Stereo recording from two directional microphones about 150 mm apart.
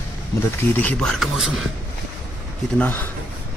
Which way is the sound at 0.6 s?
10° left (ahead or behind).